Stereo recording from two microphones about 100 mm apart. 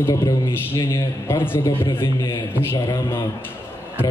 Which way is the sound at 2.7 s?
40° left (ahead or behind).